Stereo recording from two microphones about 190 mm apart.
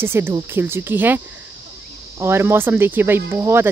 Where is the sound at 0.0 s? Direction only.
10° right (ahead or behind).